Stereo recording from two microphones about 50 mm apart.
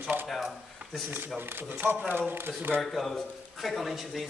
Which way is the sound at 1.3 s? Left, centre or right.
Right.